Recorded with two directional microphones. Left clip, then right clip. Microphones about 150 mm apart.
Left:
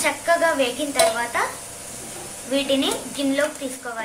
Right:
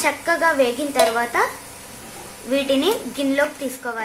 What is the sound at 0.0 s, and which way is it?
Speech, 75° right (ahead or behind).